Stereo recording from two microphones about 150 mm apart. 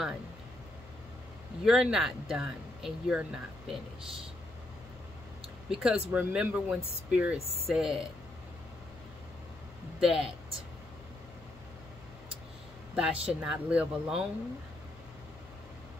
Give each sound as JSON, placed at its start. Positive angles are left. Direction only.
{"t": 1.6, "sound": "speech", "side_deg": -5}
{"t": 5.7, "sound": "speech", "side_deg": -5}
{"t": 9.9, "sound": "speech", "side_deg": -5}
{"t": 12.9, "sound": "speech", "side_deg": -5}